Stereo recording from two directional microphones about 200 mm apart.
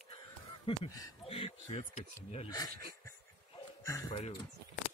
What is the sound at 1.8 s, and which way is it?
Speech, 35° left (ahead or behind).